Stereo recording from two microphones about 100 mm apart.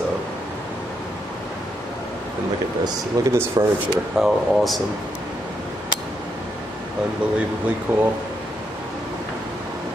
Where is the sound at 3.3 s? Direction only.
30° right (ahead or behind).